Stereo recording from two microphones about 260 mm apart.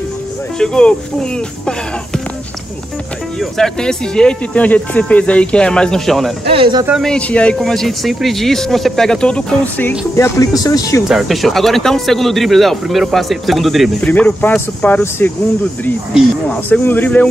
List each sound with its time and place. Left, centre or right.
0.6 s speech: centre
3.3 s speech: centre
6.5 s speech: centre
6.9 s speech: centre
11.1 s speech: centre